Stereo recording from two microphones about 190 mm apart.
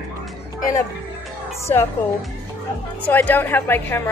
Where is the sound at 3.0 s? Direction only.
10° left (ahead or behind).